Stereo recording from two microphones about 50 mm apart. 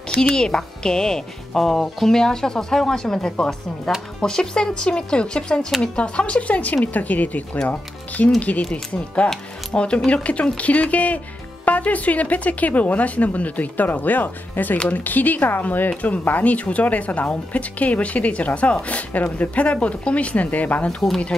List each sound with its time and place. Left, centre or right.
0.4 s speech: centre; by 20.9 s left
21.3 s speech: centre